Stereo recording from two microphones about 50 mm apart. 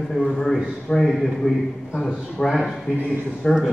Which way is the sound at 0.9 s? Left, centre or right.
Centre.